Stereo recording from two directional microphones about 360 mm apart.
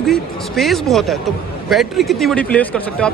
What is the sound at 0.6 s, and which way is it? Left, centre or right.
Speech, centre.